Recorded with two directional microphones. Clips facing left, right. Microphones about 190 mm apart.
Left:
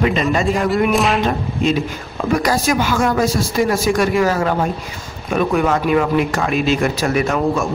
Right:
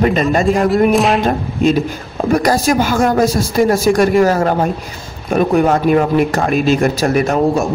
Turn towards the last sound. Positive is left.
turn(degrees=-40)  # may be behind; listen again after turning